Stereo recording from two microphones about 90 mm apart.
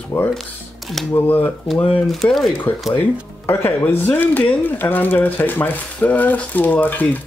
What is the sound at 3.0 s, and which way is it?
Speech, 25° left (ahead or behind).